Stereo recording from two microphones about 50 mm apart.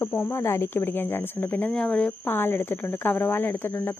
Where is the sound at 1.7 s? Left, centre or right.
Centre.